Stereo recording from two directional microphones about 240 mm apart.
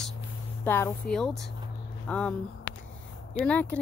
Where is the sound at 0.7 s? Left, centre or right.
Centre.